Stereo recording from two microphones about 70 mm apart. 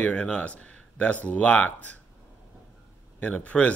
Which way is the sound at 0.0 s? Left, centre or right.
Centre.